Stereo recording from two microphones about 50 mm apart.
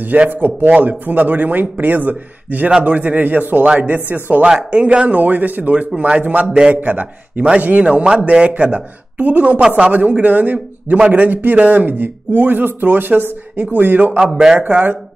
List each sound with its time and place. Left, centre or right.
0.3 s speech: right
6.8 s speech: right
14.1 s speech: centre
14.6 s speech: right